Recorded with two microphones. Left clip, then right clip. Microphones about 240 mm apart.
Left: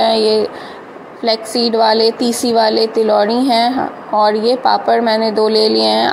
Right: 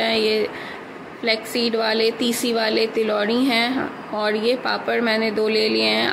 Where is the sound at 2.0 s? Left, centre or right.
Centre.